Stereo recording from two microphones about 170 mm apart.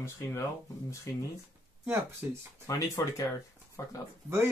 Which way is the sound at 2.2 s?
15° right (ahead or behind).